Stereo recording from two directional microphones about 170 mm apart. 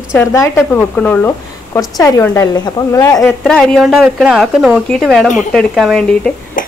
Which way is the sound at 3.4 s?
5° left (ahead or behind).